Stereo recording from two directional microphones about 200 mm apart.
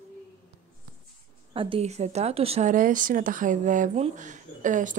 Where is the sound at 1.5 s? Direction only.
25° right (ahead or behind).